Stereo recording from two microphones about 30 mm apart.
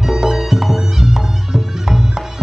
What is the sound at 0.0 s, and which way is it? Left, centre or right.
Music, centre.